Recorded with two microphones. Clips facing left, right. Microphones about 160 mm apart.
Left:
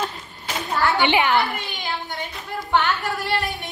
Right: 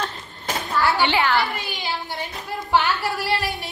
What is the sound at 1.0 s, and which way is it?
Speech, 20° left (ahead or behind).